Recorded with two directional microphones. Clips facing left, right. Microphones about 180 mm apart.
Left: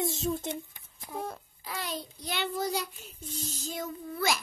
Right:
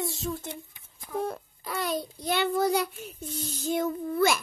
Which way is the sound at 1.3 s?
55° right (ahead or behind).